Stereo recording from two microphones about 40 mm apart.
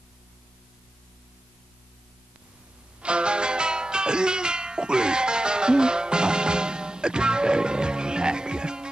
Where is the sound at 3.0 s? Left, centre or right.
Right.